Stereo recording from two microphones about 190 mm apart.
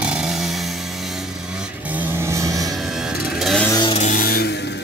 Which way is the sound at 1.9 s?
10° right (ahead or behind).